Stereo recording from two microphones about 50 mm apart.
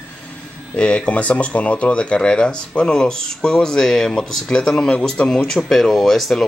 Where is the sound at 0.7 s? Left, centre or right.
Left.